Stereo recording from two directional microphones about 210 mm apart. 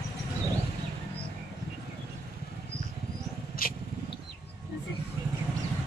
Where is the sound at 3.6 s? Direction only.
45° left (ahead or behind).